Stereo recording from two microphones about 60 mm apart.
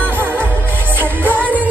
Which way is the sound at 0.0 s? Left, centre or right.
Right.